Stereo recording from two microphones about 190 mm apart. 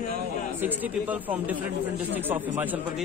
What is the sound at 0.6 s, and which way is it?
A man's voice, 10° right (ahead or behind).